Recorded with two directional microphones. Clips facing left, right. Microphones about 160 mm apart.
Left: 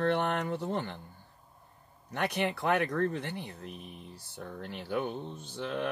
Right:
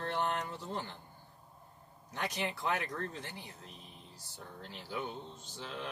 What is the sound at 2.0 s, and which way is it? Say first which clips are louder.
Speech: left 6 dB; 60° left (ahead or behind).